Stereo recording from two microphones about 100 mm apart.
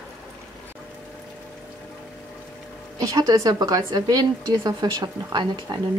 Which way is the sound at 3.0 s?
35° right (ahead or behind).